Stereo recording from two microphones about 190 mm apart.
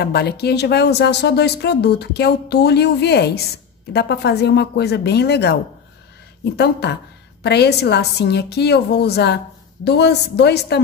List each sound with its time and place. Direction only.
0.0 s speech: 60° left (ahead or behind)